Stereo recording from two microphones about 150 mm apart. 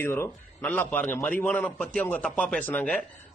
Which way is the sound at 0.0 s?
15° left (ahead or behind).